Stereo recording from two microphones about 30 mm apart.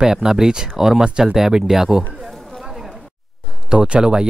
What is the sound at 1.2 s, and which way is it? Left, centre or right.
Speech, centre.